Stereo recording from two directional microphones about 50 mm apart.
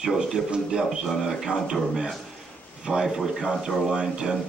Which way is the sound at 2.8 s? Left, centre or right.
Centre.